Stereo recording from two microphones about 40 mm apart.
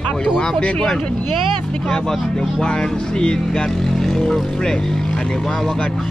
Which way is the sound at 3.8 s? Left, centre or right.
Centre.